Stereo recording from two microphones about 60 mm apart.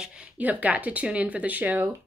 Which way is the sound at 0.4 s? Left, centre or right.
Right.